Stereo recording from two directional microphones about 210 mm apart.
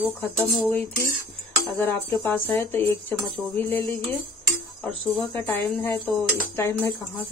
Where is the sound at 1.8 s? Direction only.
10° left (ahead or behind).